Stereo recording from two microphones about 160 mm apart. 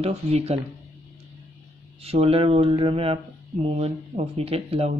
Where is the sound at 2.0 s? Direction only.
40° right (ahead or behind).